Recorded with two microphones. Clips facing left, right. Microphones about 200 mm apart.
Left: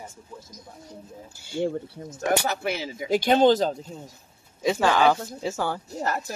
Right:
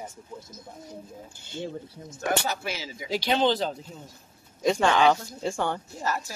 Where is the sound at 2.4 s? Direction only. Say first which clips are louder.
Left 4 dB; 60° left (ahead or behind).